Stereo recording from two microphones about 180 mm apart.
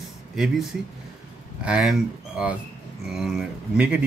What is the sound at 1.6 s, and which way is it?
Speech, 5° right (ahead or behind).